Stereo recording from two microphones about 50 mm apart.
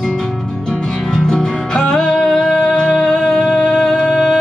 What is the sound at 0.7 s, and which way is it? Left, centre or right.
Music, centre.